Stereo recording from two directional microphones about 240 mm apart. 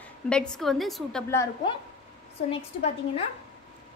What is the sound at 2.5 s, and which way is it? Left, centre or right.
Speech, left.